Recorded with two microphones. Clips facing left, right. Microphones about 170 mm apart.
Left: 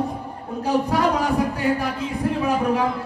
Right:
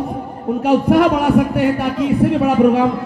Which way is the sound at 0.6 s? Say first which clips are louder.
Right 7 dB; 65° right (ahead or behind).